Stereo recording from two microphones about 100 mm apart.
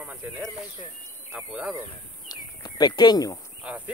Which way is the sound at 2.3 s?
45° left (ahead or behind).